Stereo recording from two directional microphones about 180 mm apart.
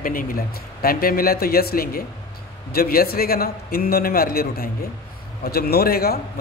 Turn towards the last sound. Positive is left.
turn(degrees=60)  # may be behind; listen again after turning